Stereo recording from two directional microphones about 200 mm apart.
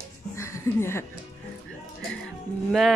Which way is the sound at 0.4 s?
15° left (ahead or behind).